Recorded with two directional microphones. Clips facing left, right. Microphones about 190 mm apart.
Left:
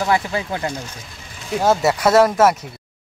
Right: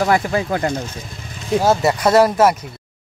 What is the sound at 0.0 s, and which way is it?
Speech, 45° right (ahead or behind).